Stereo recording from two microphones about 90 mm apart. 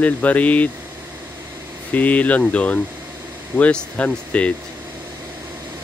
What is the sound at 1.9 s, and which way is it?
Speech, 15° left (ahead or behind).